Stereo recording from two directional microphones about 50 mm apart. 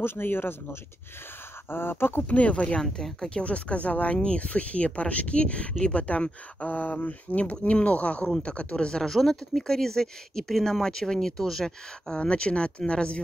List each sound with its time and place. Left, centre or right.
0.0 s speech: left
2.2 s speech: left
2.8 s speech: centre
3.4 s speech: left; by 12.2 s centre
12.2 s speech: left